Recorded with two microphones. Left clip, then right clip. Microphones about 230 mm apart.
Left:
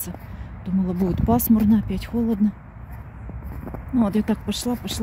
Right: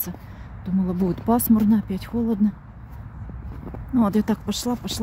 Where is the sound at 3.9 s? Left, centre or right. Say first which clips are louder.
Right 1 dB; centre.